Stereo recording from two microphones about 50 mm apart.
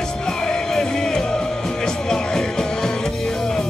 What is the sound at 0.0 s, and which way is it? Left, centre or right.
Music, centre.